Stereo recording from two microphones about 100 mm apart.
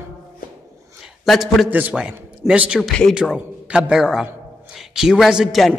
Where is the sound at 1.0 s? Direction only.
Centre (ahead or behind).